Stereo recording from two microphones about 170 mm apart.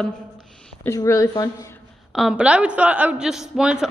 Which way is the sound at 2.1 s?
5° right (ahead or behind).